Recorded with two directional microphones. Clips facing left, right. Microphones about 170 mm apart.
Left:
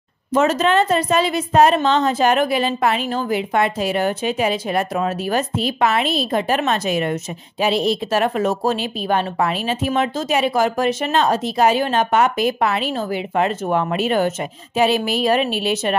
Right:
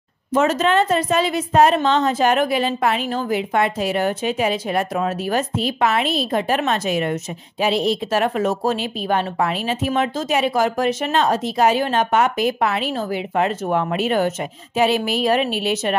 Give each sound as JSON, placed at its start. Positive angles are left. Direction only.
{"t": 0.4, "sound": "a woman's voice", "side_deg": 35}